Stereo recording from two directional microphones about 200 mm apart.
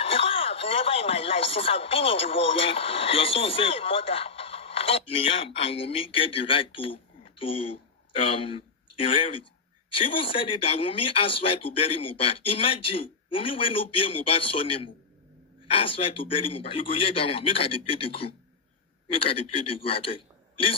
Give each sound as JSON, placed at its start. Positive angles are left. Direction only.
{"t": 0.0, "sound": "speech", "side_deg": 30}